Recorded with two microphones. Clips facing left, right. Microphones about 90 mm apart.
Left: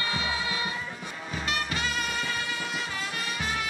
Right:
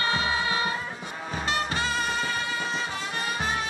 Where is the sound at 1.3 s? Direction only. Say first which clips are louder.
Right 3 dB; 30° right (ahead or behind).